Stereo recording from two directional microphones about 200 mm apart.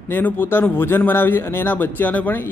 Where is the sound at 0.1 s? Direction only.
10° left (ahead or behind).